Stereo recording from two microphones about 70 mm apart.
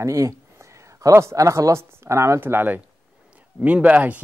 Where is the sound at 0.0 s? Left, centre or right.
Right.